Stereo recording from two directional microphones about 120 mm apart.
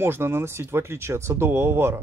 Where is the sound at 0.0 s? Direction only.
20° right (ahead or behind).